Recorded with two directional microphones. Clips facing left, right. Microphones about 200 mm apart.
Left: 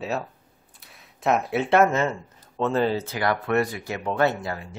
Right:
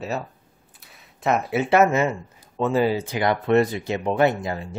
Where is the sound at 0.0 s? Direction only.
Centre (ahead or behind); by 4.6 s 20° right (ahead or behind).